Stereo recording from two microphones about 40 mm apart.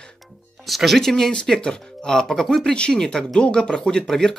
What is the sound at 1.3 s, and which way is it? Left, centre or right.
Speech, left.